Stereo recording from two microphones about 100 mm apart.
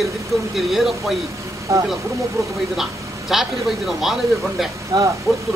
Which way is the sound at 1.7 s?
30° right (ahead or behind).